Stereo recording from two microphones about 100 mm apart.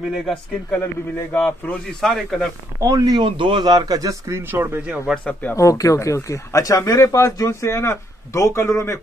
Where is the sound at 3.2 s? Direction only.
60° right (ahead or behind).